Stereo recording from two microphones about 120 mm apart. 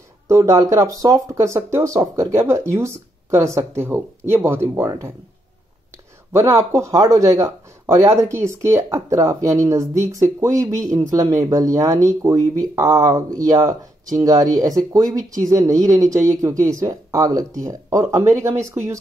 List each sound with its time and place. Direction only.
0.3 s speech: 25° right (ahead or behind)
6.3 s speech: 25° right (ahead or behind)